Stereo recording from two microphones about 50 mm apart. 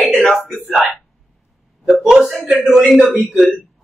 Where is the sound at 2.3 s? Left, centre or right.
Centre.